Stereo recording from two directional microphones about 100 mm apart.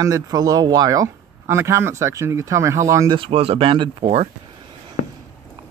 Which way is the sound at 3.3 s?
75° right (ahead or behind).